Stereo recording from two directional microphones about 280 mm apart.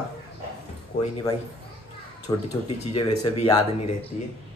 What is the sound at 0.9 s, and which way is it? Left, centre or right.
Speech, left.